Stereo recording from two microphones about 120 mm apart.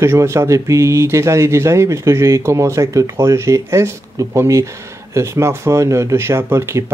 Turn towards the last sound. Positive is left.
turn(degrees=-20)  # may be behind; listen again after turning